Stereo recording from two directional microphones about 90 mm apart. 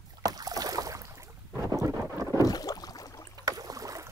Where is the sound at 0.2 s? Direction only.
45° right (ahead or behind).